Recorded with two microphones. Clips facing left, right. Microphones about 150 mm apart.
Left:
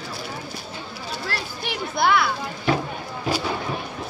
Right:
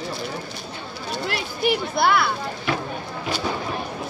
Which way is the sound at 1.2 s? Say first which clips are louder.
Right 9 dB; 15° right (ahead or behind).